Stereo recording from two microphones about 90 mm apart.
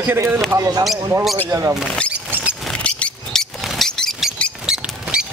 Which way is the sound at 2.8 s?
15° left (ahead or behind).